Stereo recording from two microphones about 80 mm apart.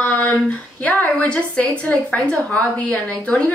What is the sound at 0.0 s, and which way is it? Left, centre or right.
A woman's voice, centre.